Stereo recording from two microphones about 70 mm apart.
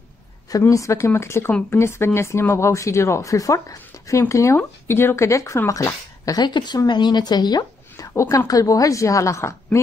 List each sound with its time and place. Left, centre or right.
0.5 s speech: left
6.4 s a woman's voice: left
8.1 s speech: left